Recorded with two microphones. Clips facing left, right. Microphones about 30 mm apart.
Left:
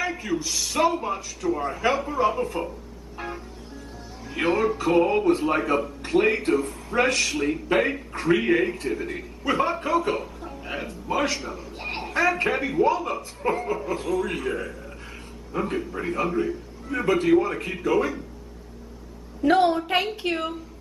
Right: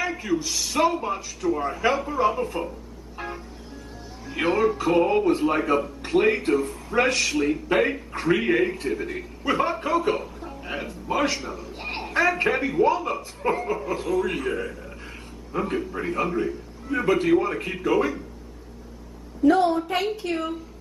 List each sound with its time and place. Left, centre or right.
0.0 s speech: centre
4.3 s speech: centre
19.4 s a woman's voice: left
20.2 s a woman's voice: left